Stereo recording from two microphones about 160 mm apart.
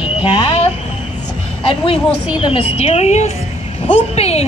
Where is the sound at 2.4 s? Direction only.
35° left (ahead or behind).